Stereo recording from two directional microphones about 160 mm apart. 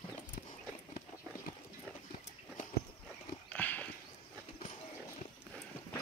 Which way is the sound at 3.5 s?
10° left (ahead or behind).